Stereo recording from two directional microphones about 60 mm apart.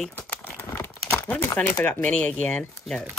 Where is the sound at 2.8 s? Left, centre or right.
Centre.